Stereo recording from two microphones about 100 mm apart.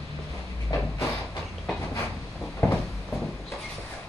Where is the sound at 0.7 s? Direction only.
55° left (ahead or behind).